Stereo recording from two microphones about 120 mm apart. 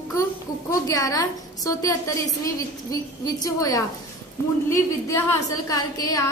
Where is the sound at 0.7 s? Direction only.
30° left (ahead or behind).